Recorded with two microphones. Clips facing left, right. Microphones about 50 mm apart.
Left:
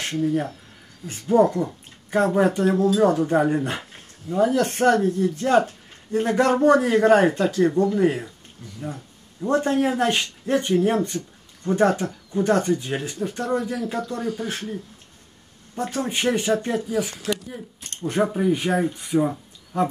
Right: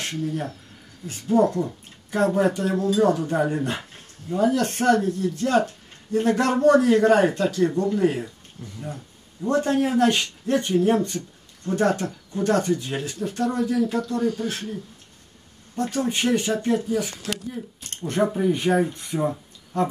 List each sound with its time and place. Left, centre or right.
0.2 s speech: centre